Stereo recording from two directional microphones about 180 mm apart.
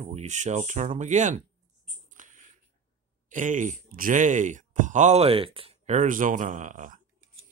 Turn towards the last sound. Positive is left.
turn(degrees=-45)  # may be behind; listen again after turning